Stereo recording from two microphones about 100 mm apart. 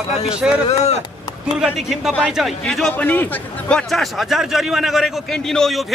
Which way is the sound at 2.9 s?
15° left (ahead or behind).